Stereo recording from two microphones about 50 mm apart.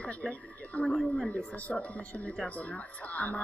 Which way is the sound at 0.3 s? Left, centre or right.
Left.